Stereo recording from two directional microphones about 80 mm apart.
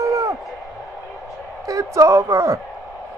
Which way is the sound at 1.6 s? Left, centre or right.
Right.